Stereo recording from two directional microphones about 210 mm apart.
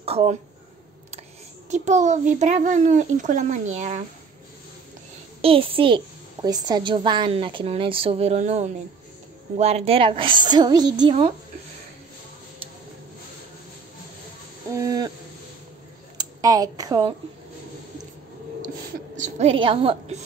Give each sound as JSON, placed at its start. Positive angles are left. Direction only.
{"t": 0.0, "sound": "a sound", "side_deg": -30}
{"t": 1.7, "sound": "a child's voice", "side_deg": -35}
{"t": 5.4, "sound": "a child's voice", "side_deg": -25}
{"t": 14.8, "sound": "hoot", "side_deg": -15}
{"t": 16.2, "sound": "speech", "side_deg": -15}
{"t": 19.1, "sound": "a woman's voice", "side_deg": -35}